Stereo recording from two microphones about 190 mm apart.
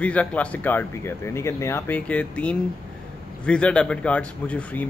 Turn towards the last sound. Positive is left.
turn(degrees=5)  # may be behind; listen again after turning